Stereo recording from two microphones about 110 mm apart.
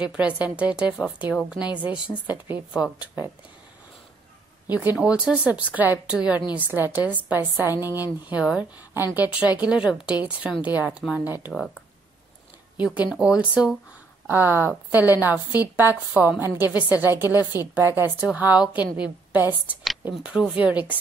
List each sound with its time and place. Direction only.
0.1 s a woman's voice: 10° right (ahead or behind)
4.6 s a woman's voice: 15° right (ahead or behind)
11.5 s speech: 5° left (ahead or behind)
12.7 s a woman's voice: 10° right (ahead or behind)
14.2 s a woman's voice: 20° right (ahead or behind)